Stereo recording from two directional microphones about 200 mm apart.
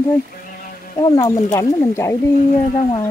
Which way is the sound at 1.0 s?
20° left (ahead or behind).